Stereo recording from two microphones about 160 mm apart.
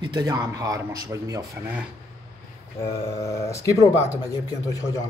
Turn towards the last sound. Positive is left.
turn(degrees=20)  # may be behind; listen again after turning